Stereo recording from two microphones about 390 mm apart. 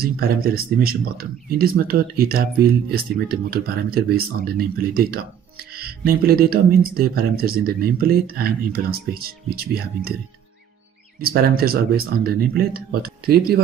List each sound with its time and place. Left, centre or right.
0.0 s speech: right
11.1 s speech: right